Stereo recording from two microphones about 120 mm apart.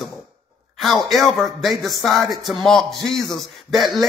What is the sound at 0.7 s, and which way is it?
Speech, centre (ahead or behind).